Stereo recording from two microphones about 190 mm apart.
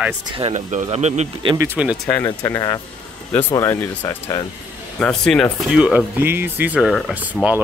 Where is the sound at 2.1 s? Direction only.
15° left (ahead or behind).